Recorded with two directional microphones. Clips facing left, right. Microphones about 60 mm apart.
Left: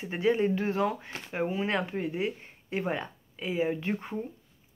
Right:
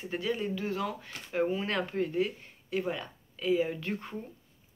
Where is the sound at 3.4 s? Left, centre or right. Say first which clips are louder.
Right 1 dB; left.